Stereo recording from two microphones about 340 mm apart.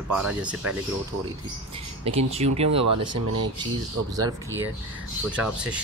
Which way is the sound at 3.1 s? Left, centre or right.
Right.